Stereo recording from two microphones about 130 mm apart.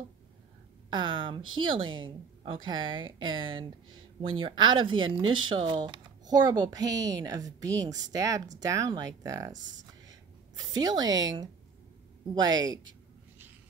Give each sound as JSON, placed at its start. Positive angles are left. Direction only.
{"t": 0.8, "sound": "speech", "side_deg": -40}
{"t": 10.0, "sound": "a sound", "side_deg": -30}
{"t": 12.4, "sound": "speech", "side_deg": -30}